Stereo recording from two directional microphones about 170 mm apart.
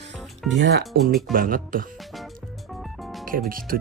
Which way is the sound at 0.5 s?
90° right.